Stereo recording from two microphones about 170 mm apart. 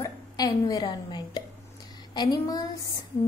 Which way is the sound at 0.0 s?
20° left (ahead or behind).